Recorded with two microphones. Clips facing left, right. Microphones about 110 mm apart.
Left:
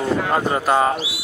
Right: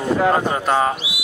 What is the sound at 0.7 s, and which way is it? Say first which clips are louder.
Speech: left 1 dB; 5° left (ahead or behind).